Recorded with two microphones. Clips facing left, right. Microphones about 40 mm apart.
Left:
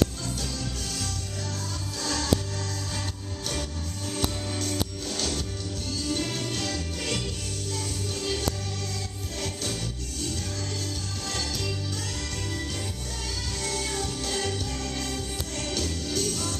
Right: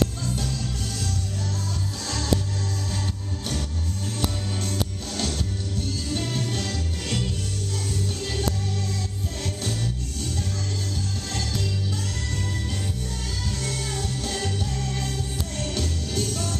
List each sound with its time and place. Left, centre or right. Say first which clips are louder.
15.8 s music: even; right